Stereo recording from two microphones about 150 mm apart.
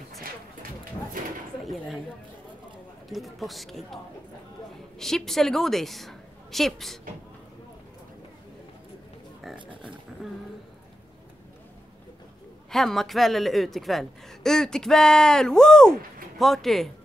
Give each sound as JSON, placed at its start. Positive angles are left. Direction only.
{"t": 1.6, "sound": "speech", "side_deg": 0}
{"t": 3.1, "sound": "a woman's voice", "side_deg": 0}
{"t": 9.7, "sound": "speech", "side_deg": -35}
{"t": 12.7, "sound": "a woman's voice", "side_deg": 0}